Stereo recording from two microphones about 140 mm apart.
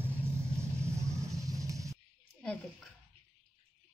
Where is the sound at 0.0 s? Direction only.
20° right (ahead or behind).